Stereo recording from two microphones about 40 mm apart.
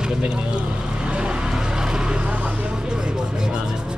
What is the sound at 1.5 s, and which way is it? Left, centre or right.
Vehicle, centre.